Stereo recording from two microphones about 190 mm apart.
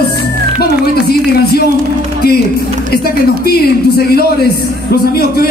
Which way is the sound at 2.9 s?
55° left (ahead or behind).